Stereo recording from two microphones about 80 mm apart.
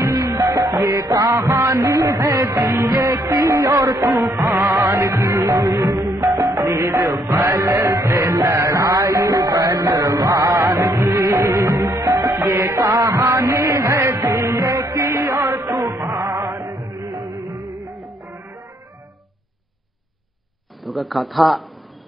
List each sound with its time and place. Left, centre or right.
0.0 s music: right
0.3 s music: right
6.1 s music: right
16.0 s music: right
16.7 s music: right
17.9 s music: centre
20.8 s a man's voice: centre